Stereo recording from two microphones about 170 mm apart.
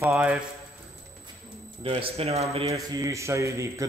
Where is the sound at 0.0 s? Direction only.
10° right (ahead or behind).